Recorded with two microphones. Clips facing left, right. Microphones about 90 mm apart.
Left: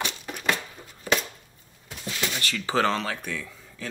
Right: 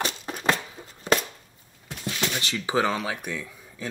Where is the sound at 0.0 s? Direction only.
35° right (ahead or behind).